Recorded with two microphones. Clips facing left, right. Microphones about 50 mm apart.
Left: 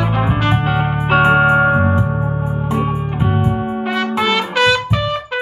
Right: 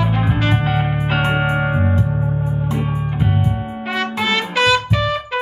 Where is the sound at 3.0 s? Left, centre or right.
Centre.